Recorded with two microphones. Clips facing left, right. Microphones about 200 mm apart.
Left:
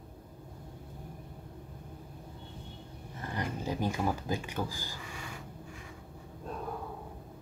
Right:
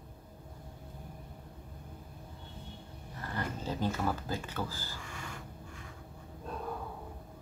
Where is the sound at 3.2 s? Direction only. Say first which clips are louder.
Left 2 dB; 15° left (ahead or behind).